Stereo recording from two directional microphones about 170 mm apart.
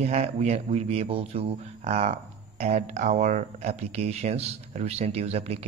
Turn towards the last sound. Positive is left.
turn(degrees=-40)  # may be behind; listen again after turning